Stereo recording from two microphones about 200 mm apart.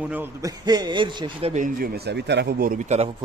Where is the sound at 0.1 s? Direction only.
15° right (ahead or behind).